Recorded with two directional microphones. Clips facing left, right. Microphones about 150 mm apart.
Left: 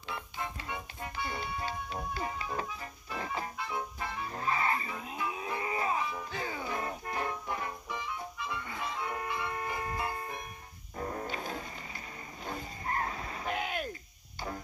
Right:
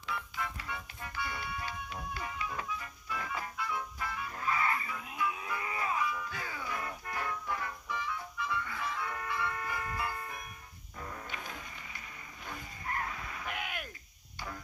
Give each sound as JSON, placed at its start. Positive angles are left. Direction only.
{"t": 0.0, "sound": "music", "side_deg": 25}
{"t": 11.0, "sound": "music", "side_deg": 35}
{"t": 12.4, "sound": "vehicle", "side_deg": 30}